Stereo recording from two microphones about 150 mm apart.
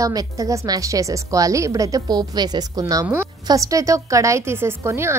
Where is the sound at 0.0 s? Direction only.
25° right (ahead or behind).